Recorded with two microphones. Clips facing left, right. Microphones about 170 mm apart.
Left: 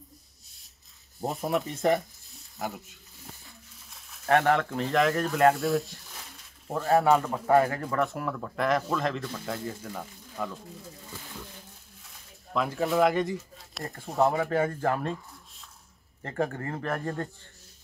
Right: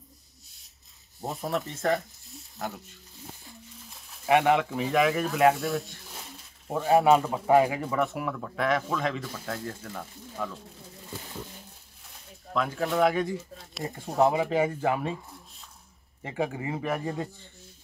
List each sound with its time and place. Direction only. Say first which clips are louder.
1.3 s speech: left 2 dB; centre (ahead or behind)
1.6 s speech: left 2 dB; 20° left (ahead or behind)
2.0 s sizzle: left 2 dB; centre (ahead or behind)
3.7 s speech: right 4 dB; centre (ahead or behind)
12.5 s speech: left 1 dB; centre (ahead or behind)
14.3 s speech: right 1 dB; 15° right (ahead or behind)